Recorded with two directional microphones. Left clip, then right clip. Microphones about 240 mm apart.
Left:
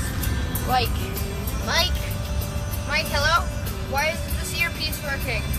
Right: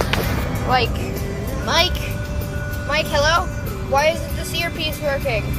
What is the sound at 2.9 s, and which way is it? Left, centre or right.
Speech, centre.